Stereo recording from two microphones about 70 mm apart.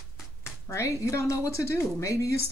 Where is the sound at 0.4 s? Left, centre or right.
Left.